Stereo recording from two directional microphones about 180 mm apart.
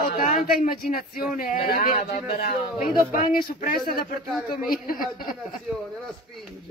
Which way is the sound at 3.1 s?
50° left (ahead or behind).